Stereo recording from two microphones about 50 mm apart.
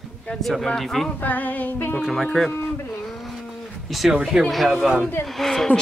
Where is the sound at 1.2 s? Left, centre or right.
Left.